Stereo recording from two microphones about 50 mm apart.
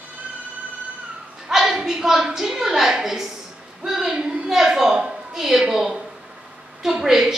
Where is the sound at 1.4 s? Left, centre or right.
Centre.